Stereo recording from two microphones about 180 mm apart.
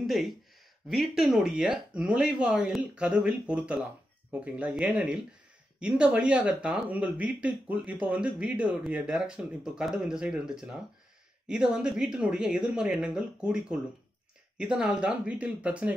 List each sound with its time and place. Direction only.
0.0 s speech: centre (ahead or behind)